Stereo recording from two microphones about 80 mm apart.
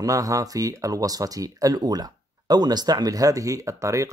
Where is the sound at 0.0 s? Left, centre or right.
Right.